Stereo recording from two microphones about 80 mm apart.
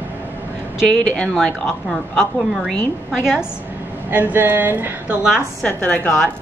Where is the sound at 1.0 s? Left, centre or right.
Centre.